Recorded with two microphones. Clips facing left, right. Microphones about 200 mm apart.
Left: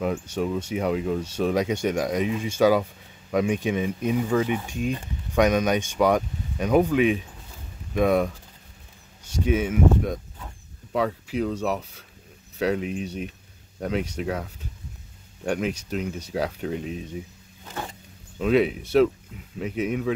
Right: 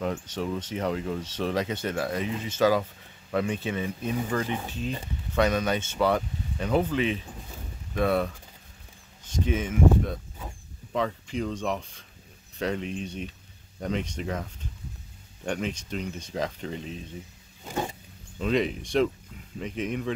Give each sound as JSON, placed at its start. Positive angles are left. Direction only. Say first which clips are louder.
{"t": 0.0, "sound": "speech", "louder": "left 4 dB", "side_deg": 10}
{"t": 9.4, "sound": "speech", "louder": "left 3 dB", "side_deg": 10}
{"t": 17.6, "sound": "a sound", "louder": "right 4 dB", "side_deg": -15}
{"t": 18.4, "sound": "speech", "louder": "left 5 dB", "side_deg": 5}